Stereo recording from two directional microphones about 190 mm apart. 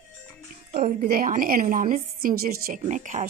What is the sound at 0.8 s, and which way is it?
Speech, 50° right (ahead or behind).